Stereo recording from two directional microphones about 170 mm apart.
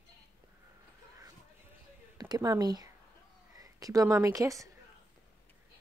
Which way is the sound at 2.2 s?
20° right (ahead or behind).